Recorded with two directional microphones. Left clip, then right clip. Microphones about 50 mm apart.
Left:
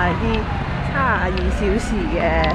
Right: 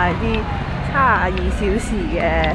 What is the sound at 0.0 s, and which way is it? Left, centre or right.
Vehicle, right.